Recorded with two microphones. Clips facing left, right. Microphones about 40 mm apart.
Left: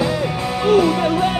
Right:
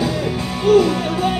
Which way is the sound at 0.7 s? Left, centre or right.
Centre.